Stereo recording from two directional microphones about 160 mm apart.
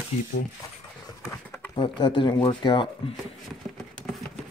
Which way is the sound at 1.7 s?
30° left (ahead or behind).